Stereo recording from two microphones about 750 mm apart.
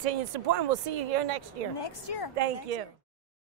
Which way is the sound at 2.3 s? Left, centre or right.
Right.